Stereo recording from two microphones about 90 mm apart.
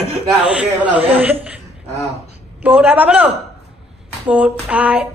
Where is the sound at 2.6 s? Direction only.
20° right (ahead or behind).